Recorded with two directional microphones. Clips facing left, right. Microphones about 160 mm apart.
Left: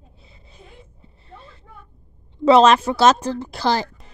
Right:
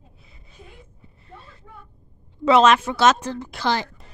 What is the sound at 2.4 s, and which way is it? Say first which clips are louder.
A woman's voice: left 3 dB; 35° left (ahead or behind).